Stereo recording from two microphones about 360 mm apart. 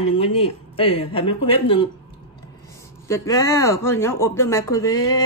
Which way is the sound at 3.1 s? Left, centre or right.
Centre.